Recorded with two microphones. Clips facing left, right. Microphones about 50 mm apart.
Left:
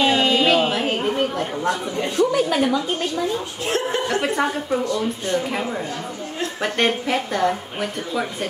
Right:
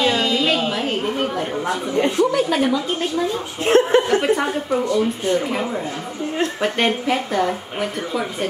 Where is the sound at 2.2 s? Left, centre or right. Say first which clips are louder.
Left 3 dB; centre.